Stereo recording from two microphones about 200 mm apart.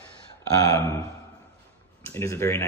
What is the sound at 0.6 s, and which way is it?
Speech, 15° left (ahead or behind).